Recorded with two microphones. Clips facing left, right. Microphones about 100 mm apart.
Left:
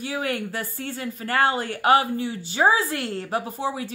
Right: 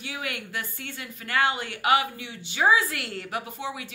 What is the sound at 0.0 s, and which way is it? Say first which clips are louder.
Speech: left 7 dB; 40° left (ahead or behind).